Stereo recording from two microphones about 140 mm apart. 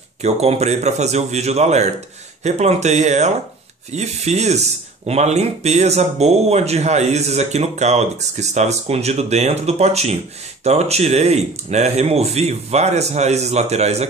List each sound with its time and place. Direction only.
0.2 s speech: 50° right (ahead or behind)